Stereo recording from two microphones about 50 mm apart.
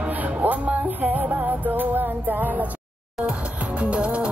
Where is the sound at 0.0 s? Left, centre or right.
Right.